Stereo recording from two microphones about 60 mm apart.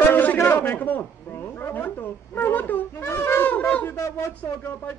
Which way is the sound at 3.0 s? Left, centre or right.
Left.